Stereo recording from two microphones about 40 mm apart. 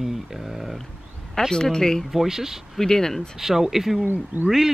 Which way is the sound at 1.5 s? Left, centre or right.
Centre.